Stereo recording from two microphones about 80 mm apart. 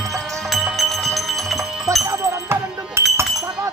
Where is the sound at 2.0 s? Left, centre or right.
Right.